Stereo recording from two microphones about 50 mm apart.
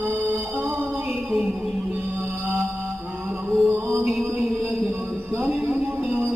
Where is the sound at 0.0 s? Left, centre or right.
Right.